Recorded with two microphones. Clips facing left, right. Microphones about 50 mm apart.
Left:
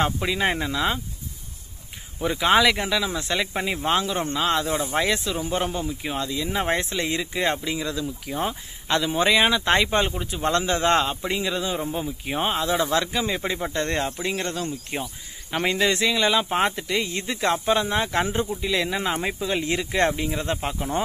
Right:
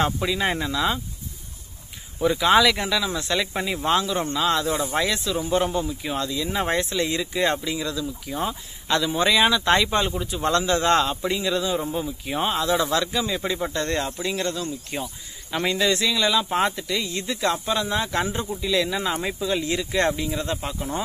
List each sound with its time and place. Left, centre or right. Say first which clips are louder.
0.0 s speech: even; centre
2.2 s speech: right 1 dB; centre
8.9 s speech: even; left